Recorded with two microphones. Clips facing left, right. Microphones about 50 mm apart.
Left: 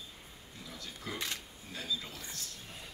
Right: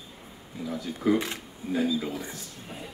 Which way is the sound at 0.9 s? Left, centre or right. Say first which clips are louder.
Right 14 dB; right.